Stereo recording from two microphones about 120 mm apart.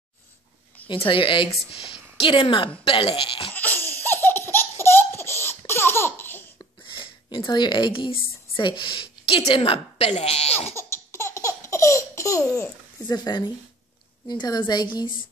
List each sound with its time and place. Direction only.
0.8 s speech: 45° left (ahead or behind)
3.5 s laughter: 15° left (ahead or behind)
6.8 s a woman's voice: 40° left (ahead or behind); by 10.7 s 60° left (ahead or behind)
10.8 s laughter: 20° left (ahead or behind)
13.1 s a woman's voice: 35° left (ahead or behind)